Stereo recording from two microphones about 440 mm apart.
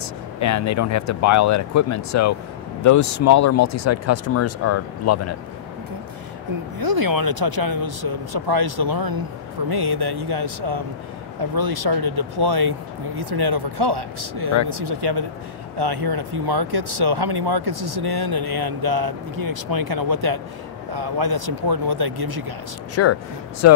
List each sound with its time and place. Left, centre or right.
0.4 s speech: left
6.8 s speech: right
23.0 s speech: left